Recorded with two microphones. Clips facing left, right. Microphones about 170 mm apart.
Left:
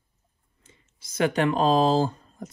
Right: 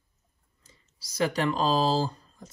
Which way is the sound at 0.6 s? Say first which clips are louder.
Left 3 dB; 35° right (ahead or behind).